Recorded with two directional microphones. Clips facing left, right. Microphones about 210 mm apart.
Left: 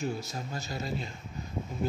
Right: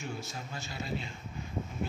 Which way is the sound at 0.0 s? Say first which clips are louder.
Left 6 dB; 40° left (ahead or behind).